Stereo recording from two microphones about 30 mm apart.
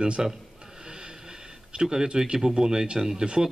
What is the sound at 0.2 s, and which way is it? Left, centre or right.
Speech, centre.